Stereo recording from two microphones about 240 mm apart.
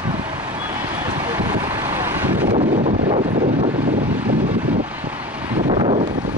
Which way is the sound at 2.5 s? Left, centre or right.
Right.